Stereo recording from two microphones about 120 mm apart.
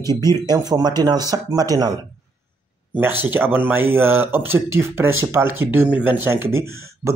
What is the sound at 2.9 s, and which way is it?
Speech, 15° right (ahead or behind).